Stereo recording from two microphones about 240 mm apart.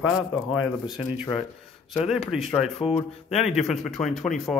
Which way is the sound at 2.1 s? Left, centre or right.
Centre.